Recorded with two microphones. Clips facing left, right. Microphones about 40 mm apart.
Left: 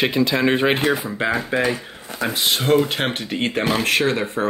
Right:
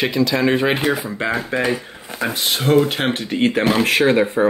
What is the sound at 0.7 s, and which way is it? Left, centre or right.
Speech, centre.